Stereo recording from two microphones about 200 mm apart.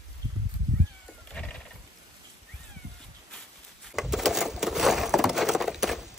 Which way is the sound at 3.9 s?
Centre (ahead or behind).